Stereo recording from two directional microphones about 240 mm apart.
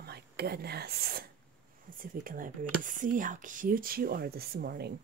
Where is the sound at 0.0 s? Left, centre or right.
Right.